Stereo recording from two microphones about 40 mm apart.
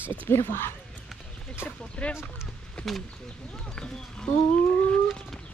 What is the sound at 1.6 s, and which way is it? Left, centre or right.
Speech, left.